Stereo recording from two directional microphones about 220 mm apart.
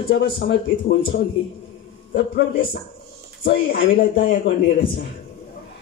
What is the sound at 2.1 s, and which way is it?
A man's voice, 50° left (ahead or behind).